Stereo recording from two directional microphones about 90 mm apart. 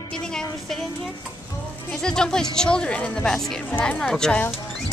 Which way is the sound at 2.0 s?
5° left (ahead or behind).